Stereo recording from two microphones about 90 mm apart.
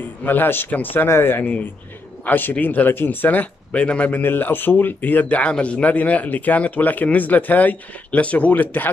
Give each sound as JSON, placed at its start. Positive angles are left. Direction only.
{"t": 0.2, "sound": "speech", "side_deg": 20}